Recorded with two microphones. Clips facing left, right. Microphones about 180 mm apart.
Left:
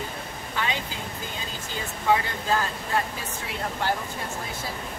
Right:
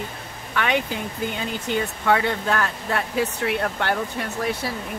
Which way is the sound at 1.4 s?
65° right (ahead or behind).